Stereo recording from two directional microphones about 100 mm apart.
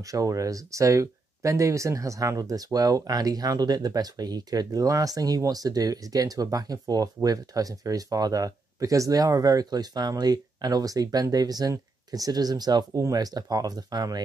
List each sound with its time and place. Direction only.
0.0 s speech: 35° right (ahead or behind)